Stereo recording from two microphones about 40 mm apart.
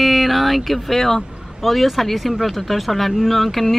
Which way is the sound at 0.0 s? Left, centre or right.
Centre.